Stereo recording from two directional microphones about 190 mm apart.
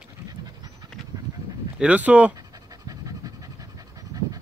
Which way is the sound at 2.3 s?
20° right (ahead or behind).